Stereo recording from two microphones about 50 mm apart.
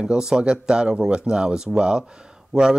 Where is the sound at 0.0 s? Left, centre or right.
Centre.